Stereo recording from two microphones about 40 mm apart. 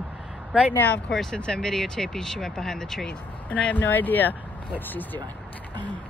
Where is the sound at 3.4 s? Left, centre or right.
Left.